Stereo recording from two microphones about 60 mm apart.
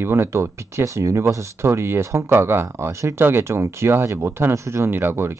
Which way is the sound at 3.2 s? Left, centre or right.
Right.